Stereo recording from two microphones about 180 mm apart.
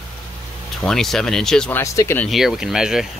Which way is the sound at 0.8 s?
Centre (ahead or behind).